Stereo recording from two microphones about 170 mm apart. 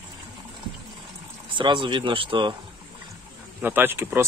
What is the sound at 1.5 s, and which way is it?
Speech, 30° right (ahead or behind).